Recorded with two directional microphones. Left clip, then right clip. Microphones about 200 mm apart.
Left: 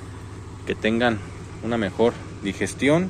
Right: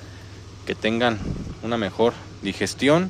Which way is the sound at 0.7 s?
15° right (ahead or behind).